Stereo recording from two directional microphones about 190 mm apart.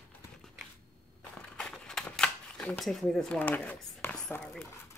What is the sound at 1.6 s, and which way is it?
Shuffling cards, 5° left (ahead or behind).